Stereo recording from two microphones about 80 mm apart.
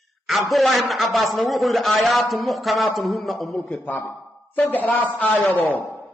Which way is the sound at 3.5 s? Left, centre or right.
Centre.